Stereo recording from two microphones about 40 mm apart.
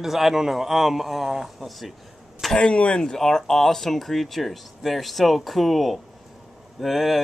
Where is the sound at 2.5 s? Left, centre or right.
Left.